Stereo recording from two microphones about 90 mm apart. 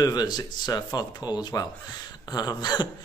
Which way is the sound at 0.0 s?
50° left (ahead or behind).